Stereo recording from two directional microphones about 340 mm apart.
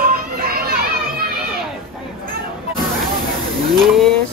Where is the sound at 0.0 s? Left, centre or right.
Right.